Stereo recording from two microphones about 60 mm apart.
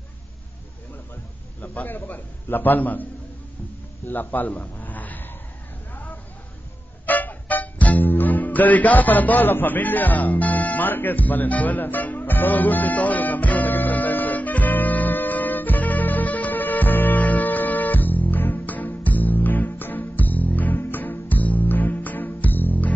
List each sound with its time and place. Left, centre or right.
1.6 s a man's voice: left
4.1 s a sound: left
7.1 s music: left